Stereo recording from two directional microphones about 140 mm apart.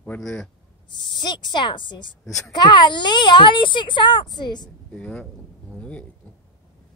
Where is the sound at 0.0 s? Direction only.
10° left (ahead or behind).